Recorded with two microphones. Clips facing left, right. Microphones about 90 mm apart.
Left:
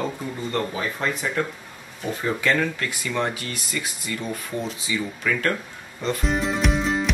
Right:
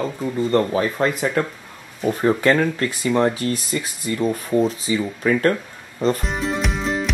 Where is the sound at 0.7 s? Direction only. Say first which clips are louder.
Right 7 dB; 50° right (ahead or behind).